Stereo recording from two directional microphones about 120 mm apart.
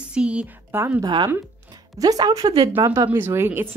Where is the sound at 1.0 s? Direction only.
40° right (ahead or behind).